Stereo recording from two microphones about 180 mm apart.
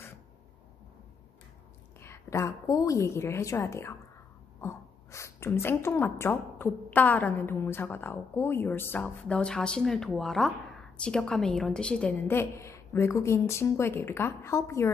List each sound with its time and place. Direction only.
2.0 s a woman's voice: 15° left (ahead or behind)